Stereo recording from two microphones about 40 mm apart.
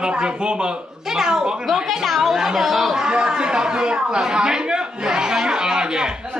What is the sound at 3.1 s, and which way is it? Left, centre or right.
Speech, right.